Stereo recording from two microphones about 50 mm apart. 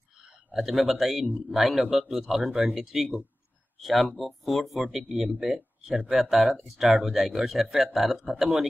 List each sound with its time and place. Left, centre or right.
0.5 s a man's voice: centre
6.4 s speech: right
6.8 s speech: centre